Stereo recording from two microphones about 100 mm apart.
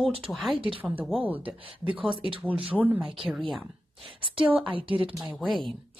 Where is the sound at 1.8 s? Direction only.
60° right (ahead or behind).